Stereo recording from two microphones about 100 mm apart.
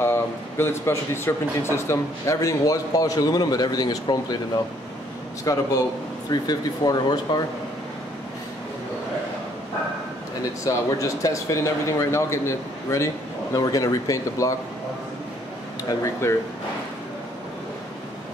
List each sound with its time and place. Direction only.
0.0 s a man's voice: 25° left (ahead or behind); by 4.4 s 40° left (ahead or behind)
5.4 s a man's voice: 35° left (ahead or behind)
10.6 s a man's voice: 35° left (ahead or behind)
16.2 s speech: 30° left (ahead or behind)